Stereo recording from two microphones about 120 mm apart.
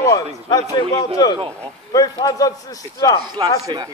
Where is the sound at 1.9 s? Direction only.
30° left (ahead or behind).